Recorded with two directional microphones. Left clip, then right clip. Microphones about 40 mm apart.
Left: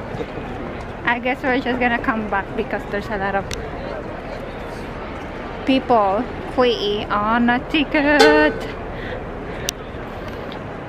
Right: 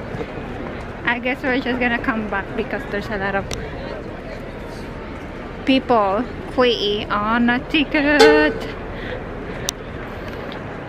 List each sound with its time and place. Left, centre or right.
1.0 s speech: centre
5.7 s a woman's voice: right
7.2 s speech: centre